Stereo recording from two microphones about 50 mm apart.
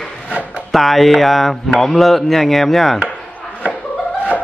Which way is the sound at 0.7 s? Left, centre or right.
Centre.